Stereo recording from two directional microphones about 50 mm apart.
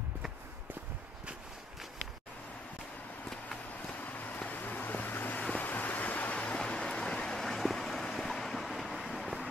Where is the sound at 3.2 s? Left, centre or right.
Centre.